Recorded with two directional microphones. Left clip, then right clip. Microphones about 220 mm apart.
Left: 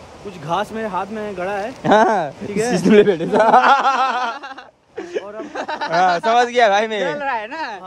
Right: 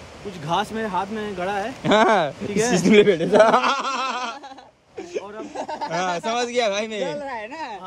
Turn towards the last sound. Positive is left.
turn(degrees=45)  # may be behind; listen again after turning